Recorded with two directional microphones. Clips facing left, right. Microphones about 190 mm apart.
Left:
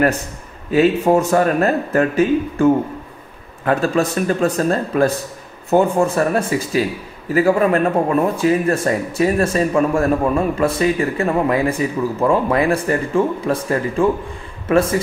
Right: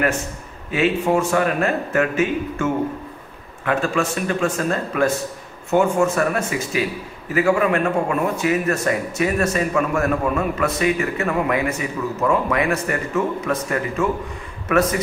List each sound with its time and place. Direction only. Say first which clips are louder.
0.7 s a man's voice: left 5 dB; 40° left (ahead or behind)